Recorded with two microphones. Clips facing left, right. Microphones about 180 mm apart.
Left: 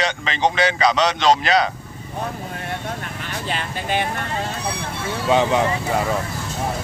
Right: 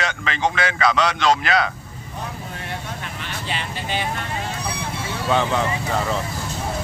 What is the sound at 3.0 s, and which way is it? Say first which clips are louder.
Vehicle: left 2 dB; 45° left (ahead or behind).